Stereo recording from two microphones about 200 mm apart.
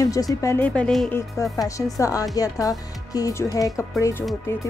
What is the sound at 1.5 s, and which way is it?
Speech, 15° left (ahead or behind).